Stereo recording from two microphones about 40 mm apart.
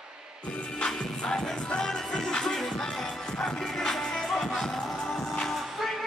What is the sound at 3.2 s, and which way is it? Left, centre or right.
Music, centre.